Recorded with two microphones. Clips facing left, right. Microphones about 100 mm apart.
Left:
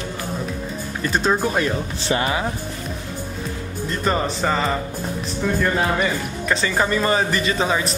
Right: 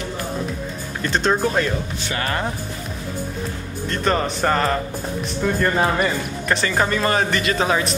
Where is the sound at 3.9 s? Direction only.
5° left (ahead or behind).